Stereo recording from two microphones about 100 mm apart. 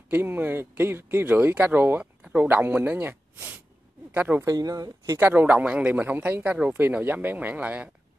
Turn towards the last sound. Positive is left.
turn(degrees=-15)  # may be behind; listen again after turning